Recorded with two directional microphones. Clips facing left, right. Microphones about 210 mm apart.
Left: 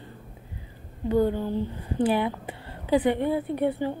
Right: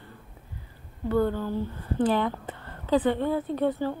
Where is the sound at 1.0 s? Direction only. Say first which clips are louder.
Left 2 dB; 15° left (ahead or behind).